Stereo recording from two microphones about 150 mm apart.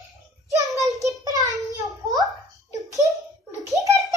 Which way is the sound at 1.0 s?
25° right (ahead or behind).